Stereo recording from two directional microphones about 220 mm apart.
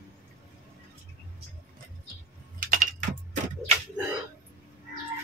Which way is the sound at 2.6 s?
40° right (ahead or behind).